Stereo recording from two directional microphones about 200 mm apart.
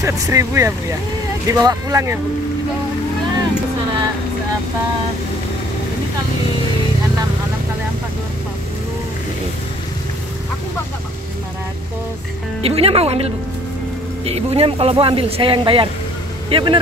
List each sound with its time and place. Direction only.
0.0 s speech: 15° right (ahead or behind)
12.6 s speech: 30° right (ahead or behind)